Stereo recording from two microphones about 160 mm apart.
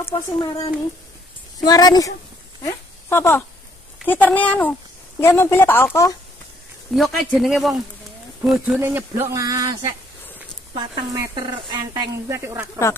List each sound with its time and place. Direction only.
0.1 s a woman's voice: 25° left (ahead or behind)
6.9 s speech: centre (ahead or behind)
8.7 s speech: 15° right (ahead or behind)
11.1 s speech: 25° right (ahead or behind)